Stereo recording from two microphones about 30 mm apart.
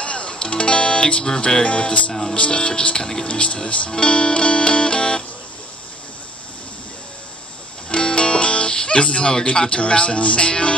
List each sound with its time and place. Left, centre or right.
0.0 s music: left
2.3 s speech: left
3.0 s speech: centre
3.3 s speech: left
4.0 s music: left
7.9 s speech: left